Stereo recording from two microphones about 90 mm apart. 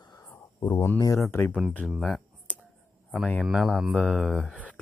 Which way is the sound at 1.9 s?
Centre (ahead or behind).